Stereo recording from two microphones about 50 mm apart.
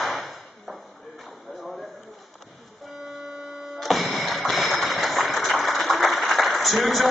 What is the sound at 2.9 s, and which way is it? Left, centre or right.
Buzzer, centre.